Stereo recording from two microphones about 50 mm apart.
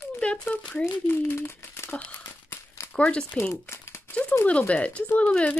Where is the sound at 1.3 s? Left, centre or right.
Left.